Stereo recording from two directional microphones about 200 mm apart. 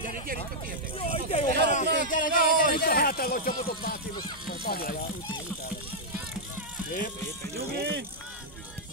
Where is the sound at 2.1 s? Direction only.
45° left (ahead or behind).